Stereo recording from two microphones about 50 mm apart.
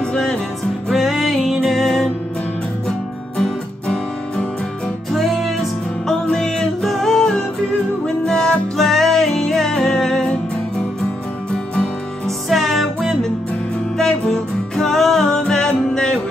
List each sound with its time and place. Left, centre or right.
0.1 s music: centre
0.8 s music: centre
3.3 s music: centre
5.1 s music: centre
6.3 s music: centre
12.4 s music: centre
13.9 s music: centre